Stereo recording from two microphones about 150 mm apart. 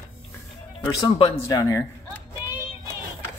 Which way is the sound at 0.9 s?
30° left (ahead or behind).